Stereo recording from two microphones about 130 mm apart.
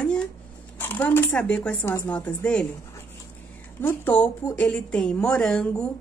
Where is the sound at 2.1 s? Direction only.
10° left (ahead or behind).